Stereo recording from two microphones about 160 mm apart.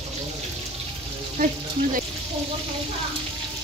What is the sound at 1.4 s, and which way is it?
Speech, 60° right (ahead or behind).